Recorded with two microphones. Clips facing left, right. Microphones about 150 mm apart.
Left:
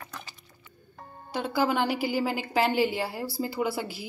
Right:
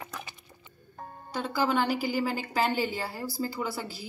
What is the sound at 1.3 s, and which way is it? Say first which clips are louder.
A woman's voice: left 1 dB; 10° left (ahead or behind).